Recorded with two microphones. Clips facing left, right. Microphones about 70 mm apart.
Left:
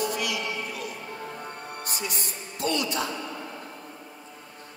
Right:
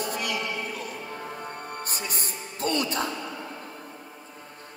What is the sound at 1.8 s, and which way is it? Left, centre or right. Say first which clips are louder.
Music: even; right.